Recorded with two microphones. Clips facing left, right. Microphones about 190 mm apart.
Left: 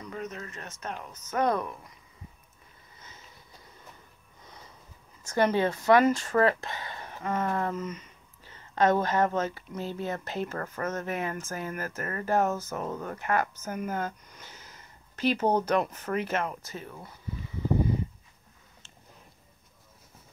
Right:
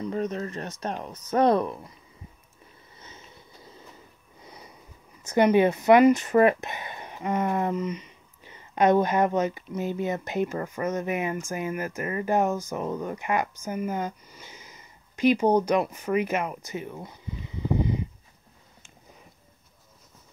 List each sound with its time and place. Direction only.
0.0 s speech: 35° right (ahead or behind)
5.2 s speech: 15° right (ahead or behind)